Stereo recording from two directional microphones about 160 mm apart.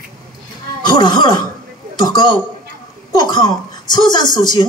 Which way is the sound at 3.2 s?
25° left (ahead or behind).